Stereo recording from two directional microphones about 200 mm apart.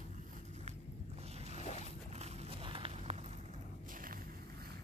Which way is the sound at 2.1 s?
25° right (ahead or behind).